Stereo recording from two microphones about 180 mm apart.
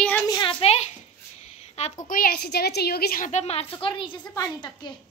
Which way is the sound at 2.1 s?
55° left (ahead or behind).